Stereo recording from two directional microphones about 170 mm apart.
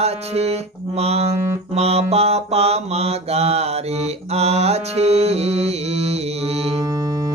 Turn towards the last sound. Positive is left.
turn(degrees=-40)  # may be behind; listen again after turning